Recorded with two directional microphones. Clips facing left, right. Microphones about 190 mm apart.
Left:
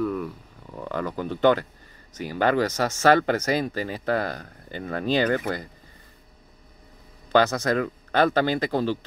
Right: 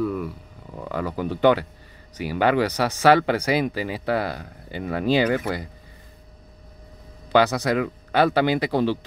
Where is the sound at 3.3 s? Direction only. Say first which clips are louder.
Right 2 dB; 10° right (ahead or behind).